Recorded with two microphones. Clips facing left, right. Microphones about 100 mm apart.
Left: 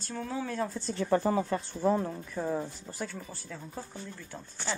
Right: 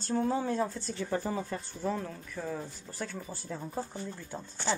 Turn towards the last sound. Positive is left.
turn(degrees=-20)  # may be behind; listen again after turning